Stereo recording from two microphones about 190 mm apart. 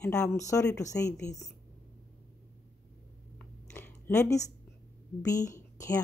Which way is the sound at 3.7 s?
10° left (ahead or behind).